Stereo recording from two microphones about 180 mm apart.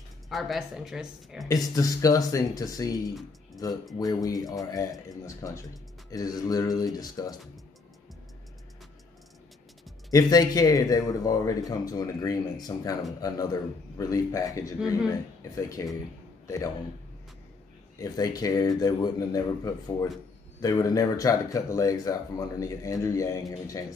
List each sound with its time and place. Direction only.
0.3 s speech: centre (ahead or behind)
1.5 s a man's voice: 20° left (ahead or behind)
10.1 s a man's voice: 20° left (ahead or behind)
17.9 s a man's voice: 20° left (ahead or behind)